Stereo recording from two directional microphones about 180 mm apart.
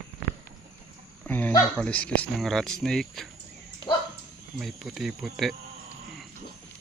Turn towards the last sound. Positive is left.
turn(degrees=0)  # may be behind; listen again after turning